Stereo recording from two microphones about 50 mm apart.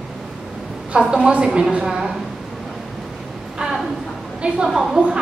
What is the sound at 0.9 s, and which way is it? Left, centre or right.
A woman's voice, centre.